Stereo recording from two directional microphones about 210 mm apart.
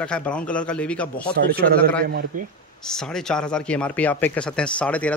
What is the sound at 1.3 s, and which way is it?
Speech, 45° right (ahead or behind).